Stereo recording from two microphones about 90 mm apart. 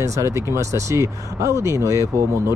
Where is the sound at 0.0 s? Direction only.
35° right (ahead or behind).